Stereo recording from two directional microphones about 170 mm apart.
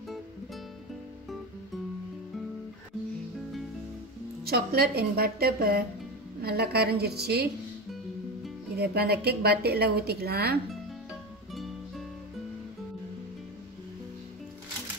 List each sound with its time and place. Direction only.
4.5 s a woman's voice: 65° right (ahead or behind)
8.7 s a woman's voice: 70° right (ahead or behind)